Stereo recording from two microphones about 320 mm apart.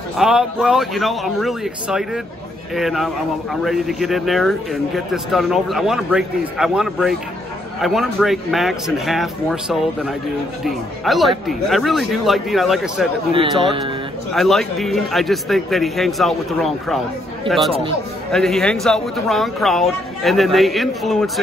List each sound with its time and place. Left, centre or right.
0.2 s speech: centre
13.3 s speech: centre
14.3 s speech: centre
18.3 s speech: centre